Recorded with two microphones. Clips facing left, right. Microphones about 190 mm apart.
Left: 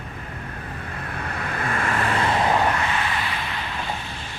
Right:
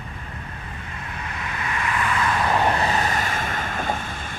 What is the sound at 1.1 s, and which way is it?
Vehicle, 55° left (ahead or behind).